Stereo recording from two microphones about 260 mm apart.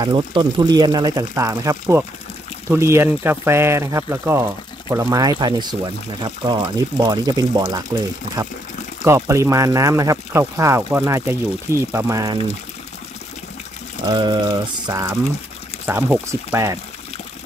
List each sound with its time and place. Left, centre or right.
0.0 s speech: centre
9.0 s speech: centre
14.0 s speech: centre